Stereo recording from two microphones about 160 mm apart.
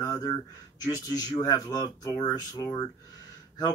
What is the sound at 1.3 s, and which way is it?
Speech, 25° left (ahead or behind).